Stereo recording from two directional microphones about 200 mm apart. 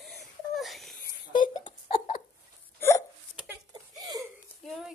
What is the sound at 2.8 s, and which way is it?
Hiccup, 10° left (ahead or behind).